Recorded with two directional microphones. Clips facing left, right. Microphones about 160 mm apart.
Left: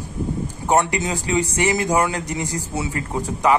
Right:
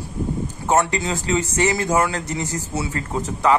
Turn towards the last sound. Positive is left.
turn(degrees=15)  # may be behind; listen again after turning